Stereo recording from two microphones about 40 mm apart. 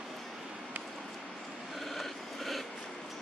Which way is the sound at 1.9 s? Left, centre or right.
Centre.